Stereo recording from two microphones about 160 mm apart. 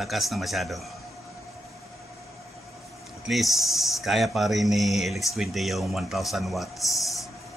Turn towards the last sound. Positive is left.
turn(degrees=0)  # may be behind; listen again after turning